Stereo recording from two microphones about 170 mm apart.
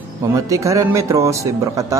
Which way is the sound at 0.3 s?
20° right (ahead or behind).